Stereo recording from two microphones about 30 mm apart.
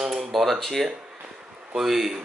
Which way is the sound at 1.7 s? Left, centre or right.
Centre.